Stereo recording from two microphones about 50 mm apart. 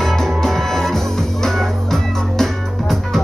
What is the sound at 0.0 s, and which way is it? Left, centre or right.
Music, centre.